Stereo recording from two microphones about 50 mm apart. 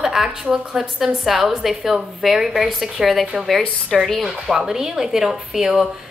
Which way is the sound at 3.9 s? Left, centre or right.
Centre.